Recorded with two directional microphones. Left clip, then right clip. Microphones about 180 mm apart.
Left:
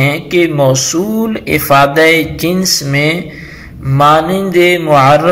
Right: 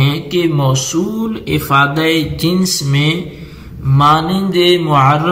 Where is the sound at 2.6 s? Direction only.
10° left (ahead or behind).